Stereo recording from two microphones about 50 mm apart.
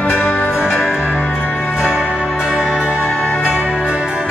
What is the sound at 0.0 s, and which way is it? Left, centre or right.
Music, left.